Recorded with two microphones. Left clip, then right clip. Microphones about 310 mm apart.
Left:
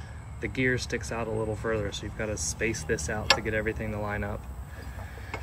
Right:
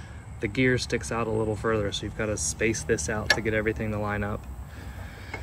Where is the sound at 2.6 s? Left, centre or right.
Centre.